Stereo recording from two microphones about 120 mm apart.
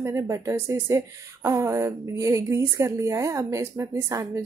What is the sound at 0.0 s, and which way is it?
A woman's voice, 25° right (ahead or behind).